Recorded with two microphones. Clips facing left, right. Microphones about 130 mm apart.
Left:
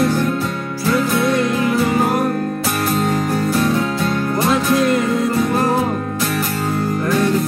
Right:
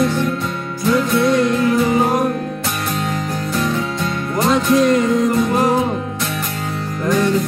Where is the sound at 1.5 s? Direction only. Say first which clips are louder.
Right 1 dB; 5° left (ahead or behind).